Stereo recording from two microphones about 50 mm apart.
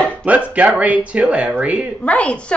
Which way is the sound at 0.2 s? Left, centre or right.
Right.